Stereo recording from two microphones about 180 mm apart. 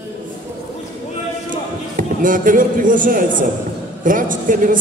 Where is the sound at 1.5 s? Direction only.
50° right (ahead or behind).